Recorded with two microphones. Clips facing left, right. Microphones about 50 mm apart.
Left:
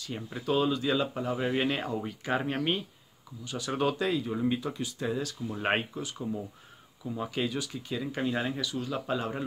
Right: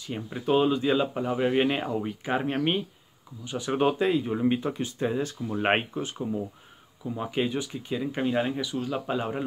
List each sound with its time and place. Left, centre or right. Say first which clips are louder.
0.0 s speech: right 4 dB; centre